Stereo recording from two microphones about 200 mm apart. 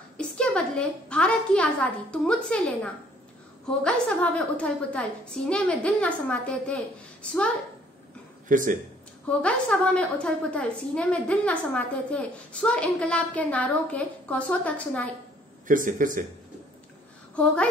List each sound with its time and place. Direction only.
0.2 s a woman's voice: 5° left (ahead or behind)
8.5 s speech: 40° right (ahead or behind)
9.4 s a woman's voice: 5° left (ahead or behind)
15.6 s speech: 40° right (ahead or behind)